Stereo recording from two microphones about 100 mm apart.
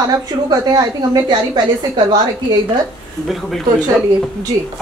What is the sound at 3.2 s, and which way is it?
Speech, centre (ahead or behind).